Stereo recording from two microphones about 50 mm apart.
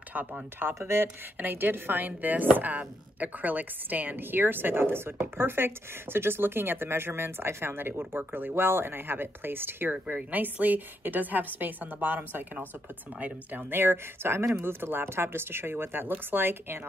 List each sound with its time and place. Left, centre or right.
0.1 s speech: right
0.7 s speech: right
1.4 s speech: right